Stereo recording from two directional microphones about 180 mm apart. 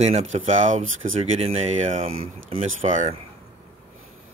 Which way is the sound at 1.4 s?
35° right (ahead or behind).